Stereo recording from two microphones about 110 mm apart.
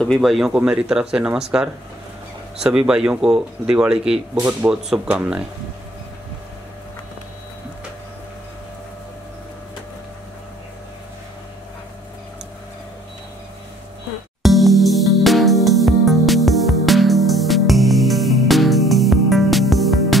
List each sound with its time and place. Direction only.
0.0 s speech: centre (ahead or behind)
14.4 s music: centre (ahead or behind)